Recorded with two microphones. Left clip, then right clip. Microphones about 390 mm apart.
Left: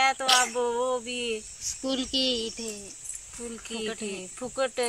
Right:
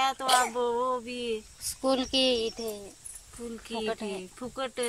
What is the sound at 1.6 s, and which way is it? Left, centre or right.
A woman's voice, right.